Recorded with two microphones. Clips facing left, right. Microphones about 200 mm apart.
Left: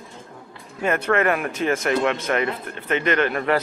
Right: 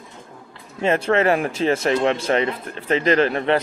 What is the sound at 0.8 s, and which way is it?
Speech, 25° right (ahead or behind).